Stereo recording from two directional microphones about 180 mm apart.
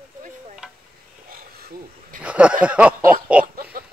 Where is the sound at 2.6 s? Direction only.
5° right (ahead or behind).